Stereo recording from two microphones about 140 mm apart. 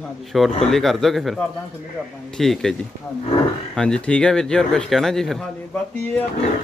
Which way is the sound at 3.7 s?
5° left (ahead or behind).